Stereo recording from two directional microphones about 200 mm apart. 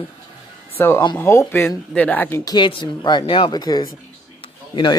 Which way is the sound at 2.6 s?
25° left (ahead or behind).